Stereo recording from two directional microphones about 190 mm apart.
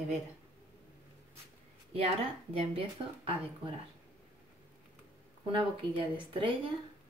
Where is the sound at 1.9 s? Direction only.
30° right (ahead or behind).